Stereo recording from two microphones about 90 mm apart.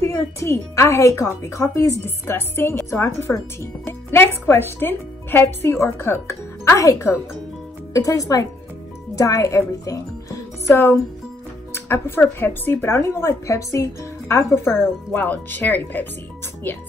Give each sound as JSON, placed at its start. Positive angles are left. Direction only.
{"t": 0.0, "sound": "speech", "side_deg": 35}